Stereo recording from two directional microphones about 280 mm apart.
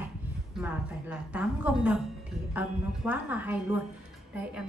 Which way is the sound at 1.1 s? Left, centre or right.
Centre.